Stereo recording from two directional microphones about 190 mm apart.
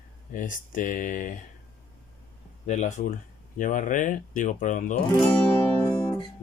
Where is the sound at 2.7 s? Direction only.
40° left (ahead or behind).